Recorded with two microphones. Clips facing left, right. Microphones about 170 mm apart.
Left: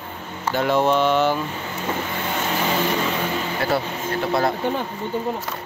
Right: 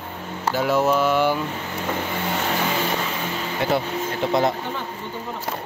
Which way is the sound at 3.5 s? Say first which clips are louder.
Right 4 dB; 20° right (ahead or behind).